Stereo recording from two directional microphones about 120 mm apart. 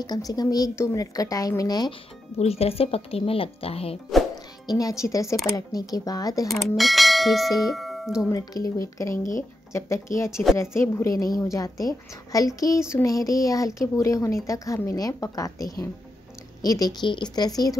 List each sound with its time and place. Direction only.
0.0 s a woman's voice: 35° left (ahead or behind)
2.3 s speech: 60° left (ahead or behind)
4.6 s a woman's voice: 30° left (ahead or behind)
6.4 s bell: centre (ahead or behind)
8.3 s a woman's voice: 30° left (ahead or behind)